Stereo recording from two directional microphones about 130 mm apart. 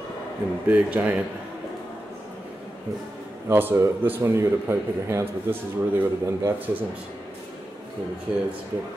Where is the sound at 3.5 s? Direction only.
20° right (ahead or behind).